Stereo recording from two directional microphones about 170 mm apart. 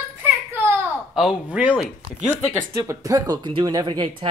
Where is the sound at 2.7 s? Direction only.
20° right (ahead or behind).